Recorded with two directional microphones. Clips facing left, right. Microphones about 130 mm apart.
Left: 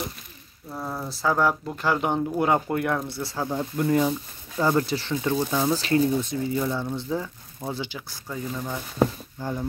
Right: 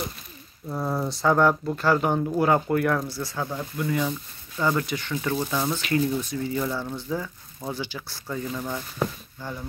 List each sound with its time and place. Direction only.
0.7 s speech: 5° right (ahead or behind); by 3.6 s 25° left (ahead or behind)
3.7 s speech: 40° left (ahead or behind); by 8.2 s 20° left (ahead or behind)
8.3 s speech: 10° left (ahead or behind)
9.0 s speech: 30° left (ahead or behind)